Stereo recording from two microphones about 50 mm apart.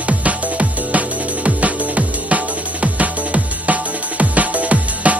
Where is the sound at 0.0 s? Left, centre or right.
Right.